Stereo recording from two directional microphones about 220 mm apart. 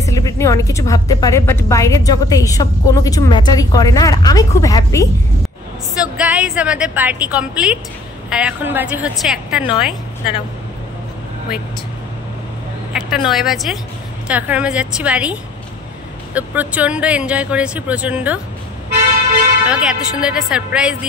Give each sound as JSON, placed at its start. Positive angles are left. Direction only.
{"t": 0.0, "sound": "a woman's voice", "side_deg": 15}
{"t": 5.9, "sound": "speech", "side_deg": -5}
{"t": 12.9, "sound": "speech", "side_deg": 0}
{"t": 16.3, "sound": "speech", "side_deg": -5}
{"t": 19.6, "sound": "speech", "side_deg": -5}